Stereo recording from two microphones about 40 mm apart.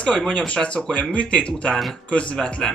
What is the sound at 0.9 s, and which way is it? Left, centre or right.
Speech, left.